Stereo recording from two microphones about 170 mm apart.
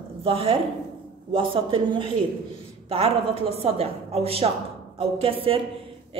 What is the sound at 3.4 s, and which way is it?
A woman's voice, 35° right (ahead or behind).